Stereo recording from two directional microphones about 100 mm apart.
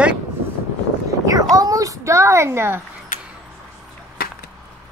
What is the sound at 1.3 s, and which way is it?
Speech, 35° right (ahead or behind).